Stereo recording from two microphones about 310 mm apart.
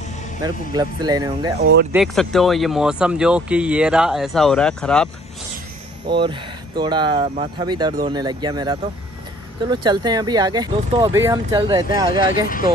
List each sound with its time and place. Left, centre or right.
0.4 s speech: centre
1.6 s speech: right
1.9 s speech: centre
6.0 s speech: centre
12.1 s speech: left